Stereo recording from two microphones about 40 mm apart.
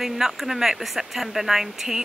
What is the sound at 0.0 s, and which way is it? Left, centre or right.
Speech, centre.